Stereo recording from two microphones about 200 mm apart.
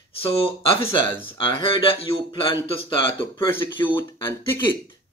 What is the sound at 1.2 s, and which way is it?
Speech, 25° left (ahead or behind).